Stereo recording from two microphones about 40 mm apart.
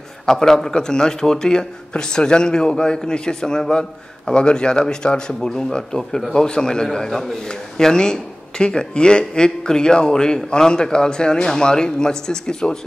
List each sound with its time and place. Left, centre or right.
0.3 s speech: centre